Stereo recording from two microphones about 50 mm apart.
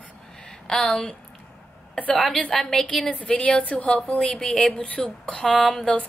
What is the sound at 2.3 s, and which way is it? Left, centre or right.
A woman's voice, centre.